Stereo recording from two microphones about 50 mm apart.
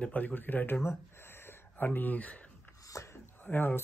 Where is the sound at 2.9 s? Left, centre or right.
Left.